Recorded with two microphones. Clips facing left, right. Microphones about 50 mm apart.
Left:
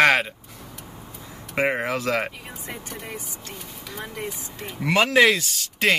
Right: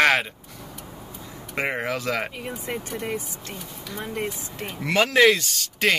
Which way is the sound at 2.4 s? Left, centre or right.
Right.